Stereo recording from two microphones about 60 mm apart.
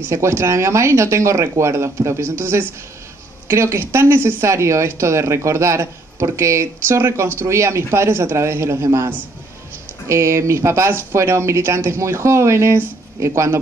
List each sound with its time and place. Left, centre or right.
0.1 s speech: right
8.8 s a man's voice: right